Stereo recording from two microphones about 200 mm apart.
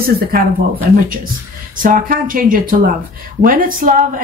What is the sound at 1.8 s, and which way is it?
Speech, 45° right (ahead or behind).